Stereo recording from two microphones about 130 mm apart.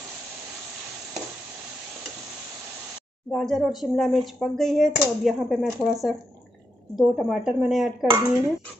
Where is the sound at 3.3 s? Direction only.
Centre (ahead or behind).